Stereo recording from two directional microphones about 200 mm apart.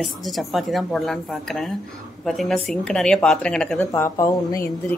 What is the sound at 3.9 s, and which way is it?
Speech, 15° left (ahead or behind).